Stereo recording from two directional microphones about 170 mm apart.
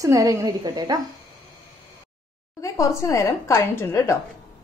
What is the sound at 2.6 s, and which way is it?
A woman's voice, 20° left (ahead or behind).